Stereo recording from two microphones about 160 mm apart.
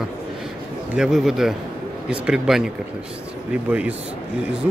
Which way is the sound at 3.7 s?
10° right (ahead or behind).